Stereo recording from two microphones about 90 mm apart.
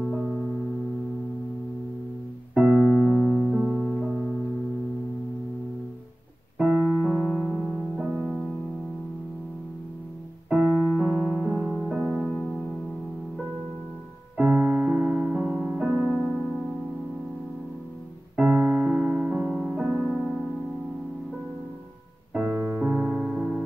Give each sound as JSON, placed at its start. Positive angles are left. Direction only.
{"t": 0.0, "sound": "music", "side_deg": 0}
{"t": 2.5, "sound": "keyboard", "side_deg": -20}
{"t": 3.0, "sound": "music", "side_deg": 15}
{"t": 3.4, "sound": "music", "side_deg": -5}
{"t": 6.7, "sound": "keyboard", "side_deg": 15}
{"t": 7.1, "sound": "music", "side_deg": 0}
{"t": 10.6, "sound": "keyboard", "side_deg": 10}
{"t": 11.1, "sound": "music", "side_deg": -15}
{"t": 14.3, "sound": "music", "side_deg": -10}
{"t": 18.3, "sound": "music", "side_deg": -15}
{"t": 20.1, "sound": "music", "side_deg": -5}
{"t": 22.3, "sound": "music", "side_deg": -15}